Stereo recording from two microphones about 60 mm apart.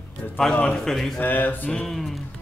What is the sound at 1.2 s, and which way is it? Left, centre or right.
Speech, left.